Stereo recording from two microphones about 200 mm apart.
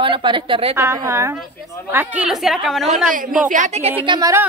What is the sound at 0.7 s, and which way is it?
A woman's voice, 15° right (ahead or behind).